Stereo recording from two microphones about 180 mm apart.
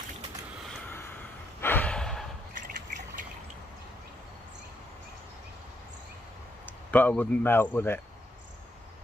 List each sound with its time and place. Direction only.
0.7 s gasp: 10° left (ahead or behind)
2.5 s a sound: 45° right (ahead or behind)
6.6 s speech: 10° left (ahead or behind)